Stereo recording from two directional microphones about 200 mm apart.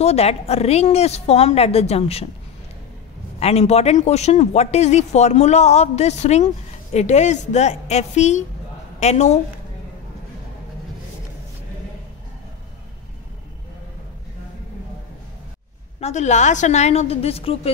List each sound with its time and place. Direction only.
0.0 s speech: 30° left (ahead or behind)
3.3 s speech: 30° left (ahead or behind)
16.0 s speech: 35° left (ahead or behind)